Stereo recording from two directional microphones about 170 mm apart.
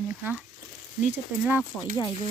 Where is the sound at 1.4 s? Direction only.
10° right (ahead or behind).